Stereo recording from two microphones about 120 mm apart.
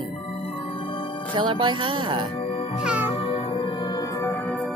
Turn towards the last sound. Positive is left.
turn(degrees=-10)  # may be behind; listen again after turning